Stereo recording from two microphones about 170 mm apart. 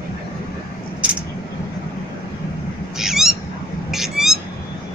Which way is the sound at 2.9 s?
Centre (ahead or behind).